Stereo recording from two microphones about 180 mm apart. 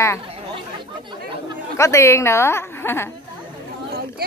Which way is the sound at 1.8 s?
15° left (ahead or behind).